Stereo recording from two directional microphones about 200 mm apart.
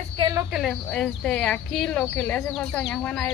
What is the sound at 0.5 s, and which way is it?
Speech, centre (ahead or behind).